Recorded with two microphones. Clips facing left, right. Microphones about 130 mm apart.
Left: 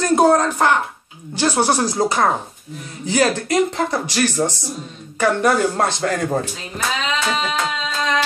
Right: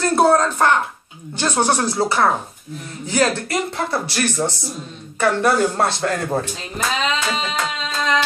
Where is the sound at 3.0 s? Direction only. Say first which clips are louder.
Left 2 dB; 15° left (ahead or behind).